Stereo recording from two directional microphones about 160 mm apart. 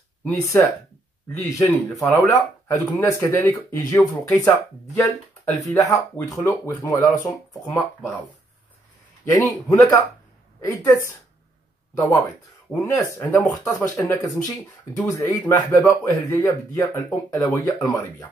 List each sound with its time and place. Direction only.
0.3 s speech: 20° left (ahead or behind)
9.3 s speech: 20° left (ahead or behind)
12.7 s speech: 20° left (ahead or behind)